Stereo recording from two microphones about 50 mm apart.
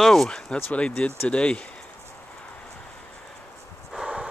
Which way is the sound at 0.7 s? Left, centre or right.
Left.